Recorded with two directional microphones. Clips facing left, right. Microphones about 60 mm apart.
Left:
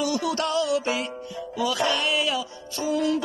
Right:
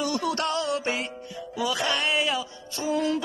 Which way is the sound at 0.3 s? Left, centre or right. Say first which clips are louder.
Left 3 dB; right.